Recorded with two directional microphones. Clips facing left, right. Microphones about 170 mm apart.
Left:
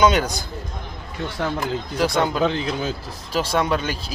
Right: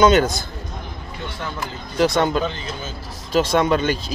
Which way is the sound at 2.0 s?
10° left (ahead or behind).